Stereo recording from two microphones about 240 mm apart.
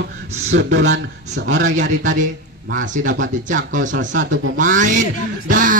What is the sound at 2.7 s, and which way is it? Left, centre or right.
A man's voice, right.